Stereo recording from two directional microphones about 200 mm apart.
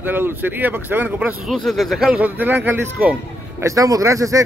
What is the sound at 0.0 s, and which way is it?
Speech, 10° right (ahead or behind).